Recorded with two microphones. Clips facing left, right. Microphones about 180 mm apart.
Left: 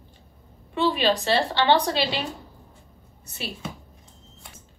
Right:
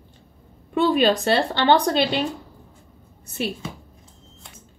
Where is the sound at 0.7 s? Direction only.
50° right (ahead or behind).